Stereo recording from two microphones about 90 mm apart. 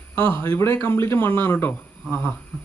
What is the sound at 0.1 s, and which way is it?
A man's voice, 25° left (ahead or behind).